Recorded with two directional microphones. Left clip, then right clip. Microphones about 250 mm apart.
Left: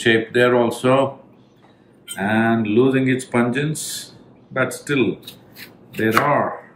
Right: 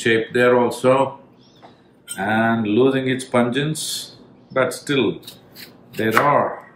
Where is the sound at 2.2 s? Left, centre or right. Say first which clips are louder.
Even; centre.